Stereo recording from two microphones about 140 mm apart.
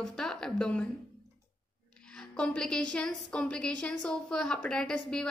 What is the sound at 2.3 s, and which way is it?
A woman's voice, 5° left (ahead or behind).